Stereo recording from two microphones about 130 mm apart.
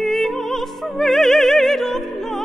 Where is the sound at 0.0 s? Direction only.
Centre (ahead or behind).